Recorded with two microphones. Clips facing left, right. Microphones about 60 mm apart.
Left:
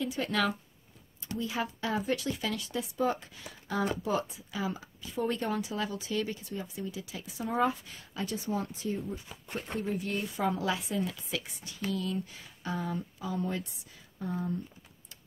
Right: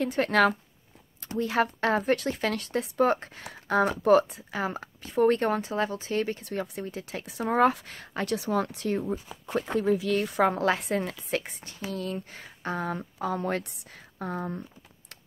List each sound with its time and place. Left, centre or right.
0.0 s speech: right
6.4 s speech: right
9.8 s speech: right